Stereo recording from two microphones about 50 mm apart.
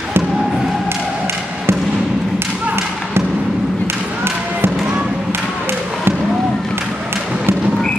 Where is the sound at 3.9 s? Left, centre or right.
Right.